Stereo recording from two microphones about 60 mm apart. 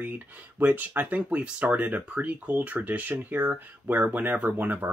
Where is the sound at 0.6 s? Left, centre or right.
Right.